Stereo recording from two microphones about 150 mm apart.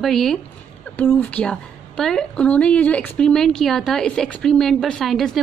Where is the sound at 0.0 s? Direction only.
Centre (ahead or behind).